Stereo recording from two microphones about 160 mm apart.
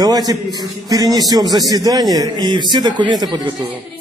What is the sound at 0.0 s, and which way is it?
A man's voice, 25° right (ahead or behind).